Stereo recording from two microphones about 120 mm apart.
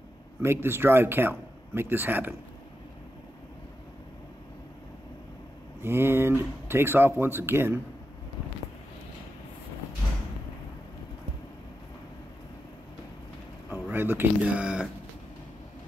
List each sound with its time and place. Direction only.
0.4 s speech: 20° right (ahead or behind)
5.8 s speech: 20° right (ahead or behind)
13.7 s speech: 15° right (ahead or behind)